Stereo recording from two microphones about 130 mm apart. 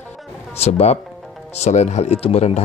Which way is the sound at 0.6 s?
55° left (ahead or behind).